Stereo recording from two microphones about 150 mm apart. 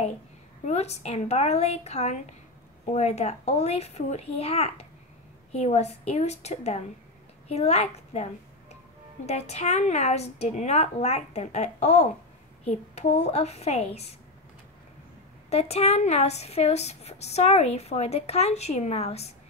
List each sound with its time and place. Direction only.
0.7 s speech: 45° left (ahead or behind)
15.5 s speech: 45° left (ahead or behind)